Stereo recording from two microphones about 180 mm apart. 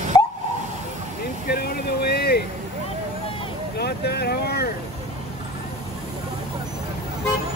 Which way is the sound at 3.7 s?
65° left (ahead or behind).